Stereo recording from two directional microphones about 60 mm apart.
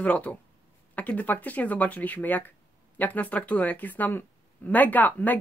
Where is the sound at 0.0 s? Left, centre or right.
Left.